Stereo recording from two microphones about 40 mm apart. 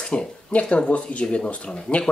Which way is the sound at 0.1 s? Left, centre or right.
Left.